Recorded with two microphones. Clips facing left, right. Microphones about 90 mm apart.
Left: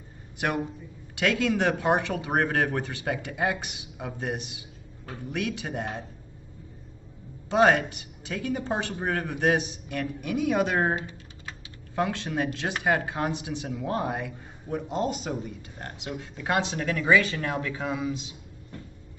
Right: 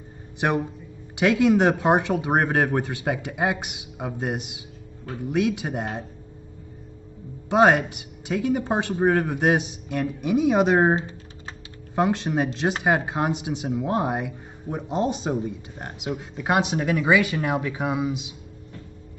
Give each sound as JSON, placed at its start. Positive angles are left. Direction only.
{"t": 1.1, "sound": "speech", "side_deg": -20}
{"t": 7.4, "sound": "speech", "side_deg": -15}